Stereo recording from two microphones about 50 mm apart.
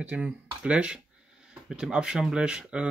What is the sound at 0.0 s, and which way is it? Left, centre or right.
Speech, right.